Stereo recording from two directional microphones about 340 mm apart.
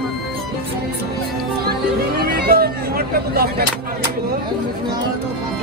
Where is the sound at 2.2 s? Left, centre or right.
Right.